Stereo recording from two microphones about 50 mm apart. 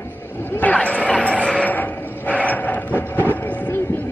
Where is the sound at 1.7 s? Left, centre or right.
Left.